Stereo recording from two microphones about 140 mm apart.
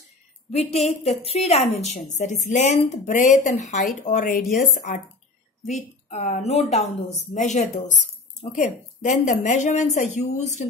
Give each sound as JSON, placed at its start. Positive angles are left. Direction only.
{"t": 0.5, "sound": "a woman's voice", "side_deg": 50}
{"t": 4.1, "sound": "a woman's voice", "side_deg": 75}